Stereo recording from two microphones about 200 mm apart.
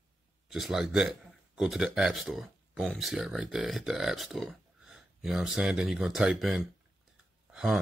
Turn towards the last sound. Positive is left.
turn(degrees=-5)  # may be behind; listen again after turning